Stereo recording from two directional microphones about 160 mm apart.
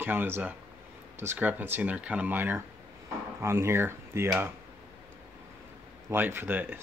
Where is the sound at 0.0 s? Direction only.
10° right (ahead or behind).